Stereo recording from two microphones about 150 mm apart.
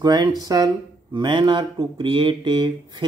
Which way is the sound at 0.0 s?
25° right (ahead or behind).